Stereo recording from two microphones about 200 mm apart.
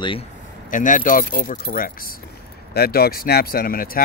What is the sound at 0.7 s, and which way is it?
Speech, 40° left (ahead or behind).